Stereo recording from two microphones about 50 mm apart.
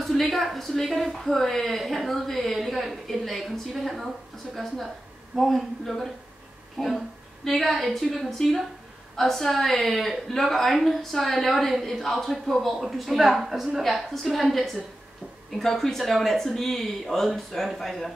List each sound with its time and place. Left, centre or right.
0.0 s a woman's voice: centre
6.8 s speech: centre
7.4 s a woman's voice: centre